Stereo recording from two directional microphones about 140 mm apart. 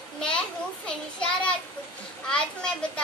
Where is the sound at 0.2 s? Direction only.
5° left (ahead or behind).